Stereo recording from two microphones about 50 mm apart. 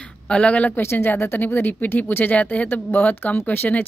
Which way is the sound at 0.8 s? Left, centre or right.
Left.